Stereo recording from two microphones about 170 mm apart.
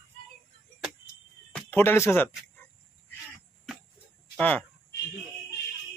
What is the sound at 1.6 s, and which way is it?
Speech, 10° left (ahead or behind).